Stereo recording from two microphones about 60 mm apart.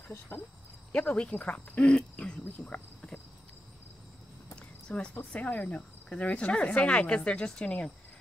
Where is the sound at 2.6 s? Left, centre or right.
Left.